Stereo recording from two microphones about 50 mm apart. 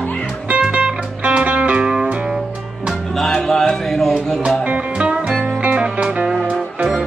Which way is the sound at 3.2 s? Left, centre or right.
Centre.